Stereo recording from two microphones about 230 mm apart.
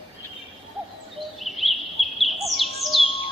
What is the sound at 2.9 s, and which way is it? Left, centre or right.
Bird, left.